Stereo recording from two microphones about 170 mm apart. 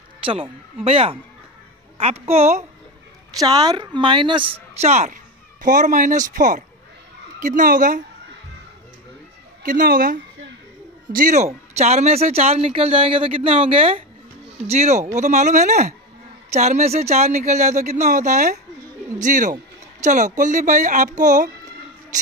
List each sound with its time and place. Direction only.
0.2 s a woman's voice: 30° right (ahead or behind)
3.3 s speech: 25° right (ahead or behind); by 8.0 s 55° right (ahead or behind)
9.6 s a woman's voice: 55° right (ahead or behind)